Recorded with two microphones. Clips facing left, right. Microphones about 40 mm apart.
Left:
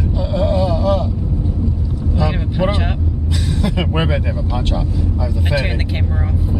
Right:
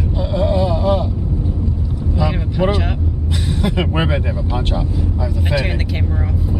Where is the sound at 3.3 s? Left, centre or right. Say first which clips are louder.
Right 1 dB; centre.